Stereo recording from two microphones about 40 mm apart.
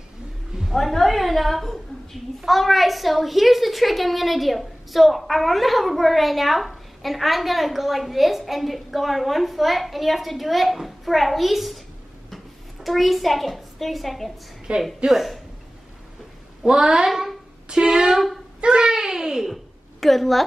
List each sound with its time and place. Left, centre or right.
0.7 s a woman's voice: centre
12.8 s a woman's voice: centre
14.7 s speech: right
15.0 s a woman's voice: centre
16.6 s speech: centre
17.1 s speech: centre
17.6 s speech: right
18.1 s a woman's voice: centre
18.6 s a child's voice: right; by 20.4 s centre